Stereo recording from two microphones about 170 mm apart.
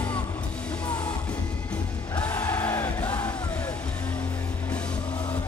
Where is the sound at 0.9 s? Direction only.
25° left (ahead or behind).